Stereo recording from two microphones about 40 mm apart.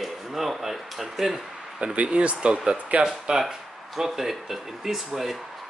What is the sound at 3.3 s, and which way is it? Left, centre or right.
Speech, centre.